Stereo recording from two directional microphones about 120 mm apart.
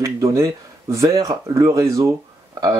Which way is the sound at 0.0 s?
25° right (ahead or behind).